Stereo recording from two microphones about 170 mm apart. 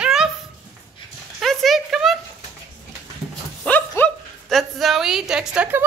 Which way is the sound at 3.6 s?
5° left (ahead or behind).